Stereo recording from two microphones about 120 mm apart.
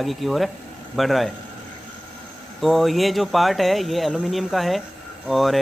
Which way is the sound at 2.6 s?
Centre (ahead or behind).